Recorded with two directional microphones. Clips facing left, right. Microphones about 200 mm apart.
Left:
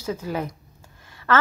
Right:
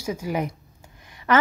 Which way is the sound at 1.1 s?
15° right (ahead or behind).